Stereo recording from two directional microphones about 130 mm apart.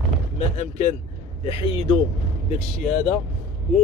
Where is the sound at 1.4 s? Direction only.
45° left (ahead or behind).